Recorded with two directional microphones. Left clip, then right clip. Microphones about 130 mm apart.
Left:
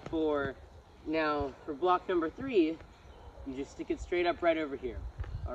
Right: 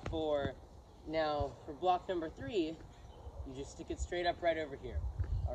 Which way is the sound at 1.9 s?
10° right (ahead or behind).